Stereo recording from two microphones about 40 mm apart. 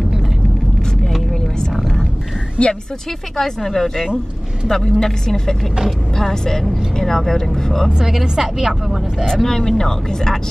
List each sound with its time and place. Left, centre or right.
1.8 s music: centre
2.6 s speech: left
3.3 s speech: centre
8.0 s a woman's voice: centre
9.2 s speech: centre